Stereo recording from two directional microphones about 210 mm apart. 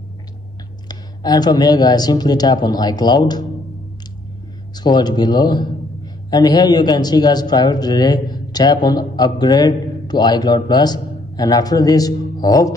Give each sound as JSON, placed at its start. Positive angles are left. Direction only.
{"t": 0.8, "sound": "a man's voice", "side_deg": 20}
{"t": 4.7, "sound": "a man's voice", "side_deg": 20}